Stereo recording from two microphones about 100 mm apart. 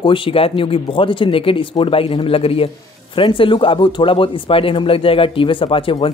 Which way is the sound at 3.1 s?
60° left (ahead or behind).